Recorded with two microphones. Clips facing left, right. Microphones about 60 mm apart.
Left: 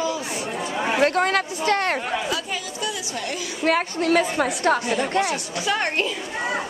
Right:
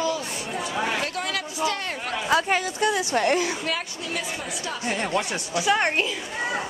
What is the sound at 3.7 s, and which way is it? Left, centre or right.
A woman's voice, left.